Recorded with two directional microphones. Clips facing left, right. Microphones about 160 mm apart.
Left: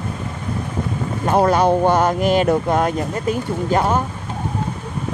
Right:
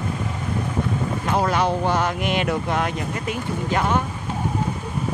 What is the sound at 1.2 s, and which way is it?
Speech, 45° left (ahead or behind).